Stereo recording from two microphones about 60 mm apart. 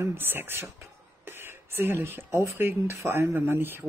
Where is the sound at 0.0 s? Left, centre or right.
Right.